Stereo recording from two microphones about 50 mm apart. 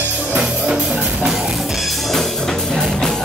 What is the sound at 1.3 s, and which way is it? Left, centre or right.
Music, centre.